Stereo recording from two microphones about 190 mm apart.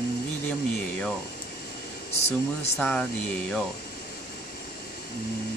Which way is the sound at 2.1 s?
35° left (ahead or behind).